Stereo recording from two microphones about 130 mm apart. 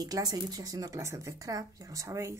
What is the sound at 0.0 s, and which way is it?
Speech, 30° right (ahead or behind).